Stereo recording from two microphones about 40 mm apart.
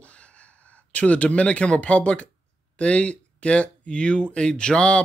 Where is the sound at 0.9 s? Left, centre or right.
Left.